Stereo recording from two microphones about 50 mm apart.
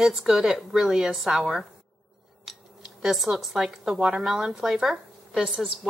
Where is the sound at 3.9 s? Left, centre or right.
Right.